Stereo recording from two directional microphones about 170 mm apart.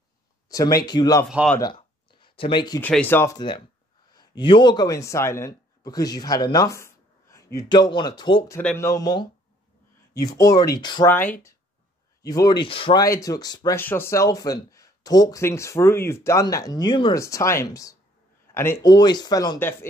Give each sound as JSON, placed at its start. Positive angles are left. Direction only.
{"t": 0.5, "sound": "speech", "side_deg": 20}
{"t": 1.6, "sound": "a sound", "side_deg": 25}
{"t": 2.8, "sound": "speech", "side_deg": 10}
{"t": 3.3, "sound": "a man's voice", "side_deg": 25}
{"t": 10.3, "sound": "speech", "side_deg": 20}
{"t": 11.1, "sound": "speech", "side_deg": 10}
{"t": 13.0, "sound": "speech", "side_deg": 20}
{"t": 13.7, "sound": "speech", "side_deg": 10}